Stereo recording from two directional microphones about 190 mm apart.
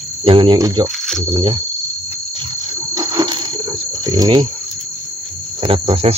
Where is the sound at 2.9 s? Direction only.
20° right (ahead or behind).